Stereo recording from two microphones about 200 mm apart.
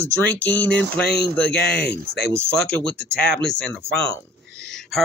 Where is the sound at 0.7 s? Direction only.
55° left (ahead or behind).